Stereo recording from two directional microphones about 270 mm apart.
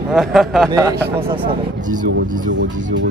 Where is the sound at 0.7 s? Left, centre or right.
Centre.